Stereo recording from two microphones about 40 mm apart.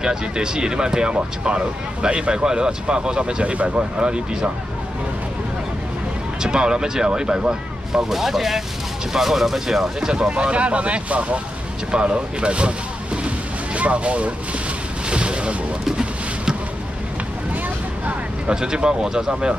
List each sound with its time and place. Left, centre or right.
0.0 s speech: centre
6.4 s speech: centre
8.1 s speech: centre
10.4 s speech: right
15.0 s a sound: right
18.5 s speech: centre